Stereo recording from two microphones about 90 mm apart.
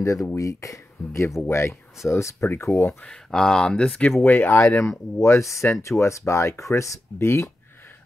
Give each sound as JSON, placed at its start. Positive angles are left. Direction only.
{"t": 0.0, "sound": "speech", "side_deg": 40}
{"t": 3.0, "sound": "speech", "side_deg": 5}
{"t": 4.2, "sound": "speech", "side_deg": 25}